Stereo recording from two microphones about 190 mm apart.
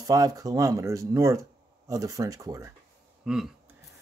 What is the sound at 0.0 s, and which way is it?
Speech, 20° right (ahead or behind).